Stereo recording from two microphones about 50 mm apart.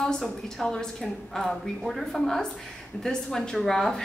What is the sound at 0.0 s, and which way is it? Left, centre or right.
A woman's voice, centre.